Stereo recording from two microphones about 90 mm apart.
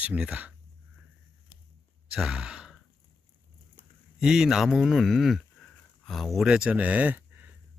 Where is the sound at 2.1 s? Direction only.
10° right (ahead or behind).